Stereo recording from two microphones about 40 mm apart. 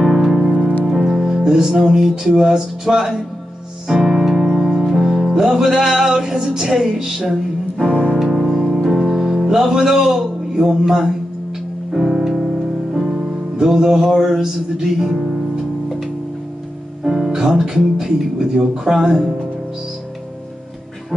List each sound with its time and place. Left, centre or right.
0.0 s music: centre
0.4 s music: right
0.8 s music: centre
3.8 s speech: centre
4.5 s music: centre
6.1 s speech: centre
8.2 s music: centre
17.0 s music: centre
17.3 s speech: centre